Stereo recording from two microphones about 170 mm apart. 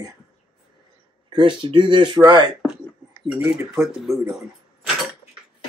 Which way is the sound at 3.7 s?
Centre (ahead or behind).